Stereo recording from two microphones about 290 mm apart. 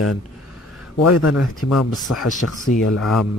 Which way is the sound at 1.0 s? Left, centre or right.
Left.